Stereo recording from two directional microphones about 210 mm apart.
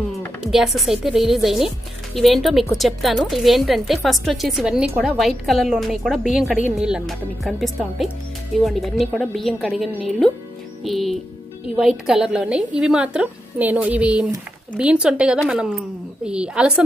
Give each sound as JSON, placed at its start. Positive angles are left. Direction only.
{"t": 0.1, "sound": "speech", "side_deg": 0}